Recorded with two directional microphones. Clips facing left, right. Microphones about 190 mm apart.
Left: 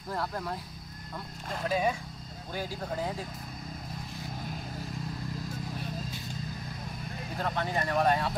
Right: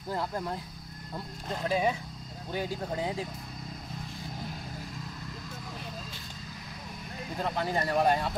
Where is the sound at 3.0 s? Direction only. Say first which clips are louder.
Right 1 dB; 25° right (ahead or behind).